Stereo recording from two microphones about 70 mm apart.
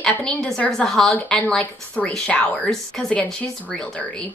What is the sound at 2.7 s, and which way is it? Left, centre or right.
Speech, centre.